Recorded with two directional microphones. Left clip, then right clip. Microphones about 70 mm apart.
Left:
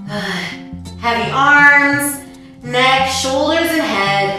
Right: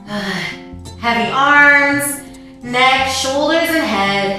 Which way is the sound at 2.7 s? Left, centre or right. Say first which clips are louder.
Even; centre.